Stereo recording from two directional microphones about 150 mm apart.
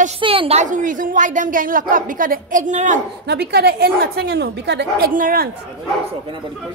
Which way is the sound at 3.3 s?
90° right.